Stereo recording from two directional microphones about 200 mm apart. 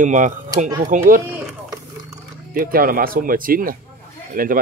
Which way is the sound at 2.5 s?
45° right (ahead or behind).